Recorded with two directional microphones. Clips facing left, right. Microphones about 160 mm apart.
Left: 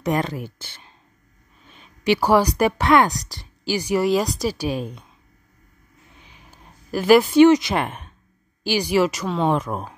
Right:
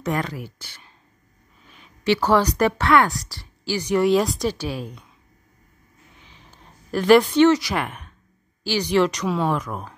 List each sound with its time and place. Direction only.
0.0 s speech: 20° left (ahead or behind)
1.7 s speech: 15° left (ahead or behind)
6.2 s a sound: 10° left (ahead or behind)
8.6 s speech: 10° left (ahead or behind)
9.5 s speech: 25° left (ahead or behind)